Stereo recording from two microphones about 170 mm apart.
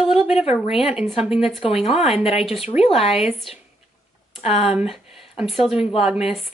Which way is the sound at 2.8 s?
35° left (ahead or behind).